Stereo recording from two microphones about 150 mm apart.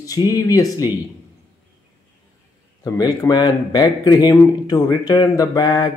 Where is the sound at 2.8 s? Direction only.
25° left (ahead or behind).